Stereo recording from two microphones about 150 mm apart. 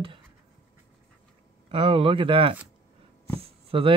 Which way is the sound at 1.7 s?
35° right (ahead or behind).